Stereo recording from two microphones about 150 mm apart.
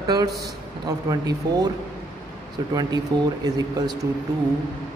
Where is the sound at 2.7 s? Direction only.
25° right (ahead or behind).